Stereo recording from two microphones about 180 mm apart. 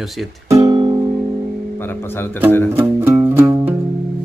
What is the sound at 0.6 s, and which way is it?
Music, 20° right (ahead or behind).